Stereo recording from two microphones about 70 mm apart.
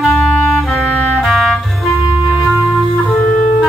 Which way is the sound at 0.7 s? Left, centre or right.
Left.